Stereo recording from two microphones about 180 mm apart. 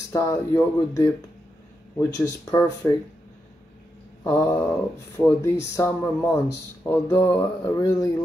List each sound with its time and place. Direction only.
0.1 s speech: 15° left (ahead or behind)
2.1 s speech: 20° left (ahead or behind)
4.2 s speech: 15° left (ahead or behind)